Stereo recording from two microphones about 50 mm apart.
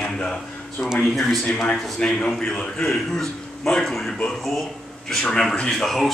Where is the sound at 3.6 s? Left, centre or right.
Centre.